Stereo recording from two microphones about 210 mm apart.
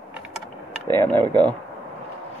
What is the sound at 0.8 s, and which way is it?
Speech, 10° left (ahead or behind).